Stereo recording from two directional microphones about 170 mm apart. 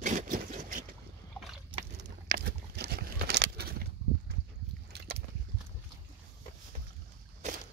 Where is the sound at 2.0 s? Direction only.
65° right (ahead or behind).